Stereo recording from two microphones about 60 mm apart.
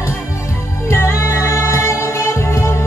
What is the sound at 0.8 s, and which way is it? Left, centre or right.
Music, left.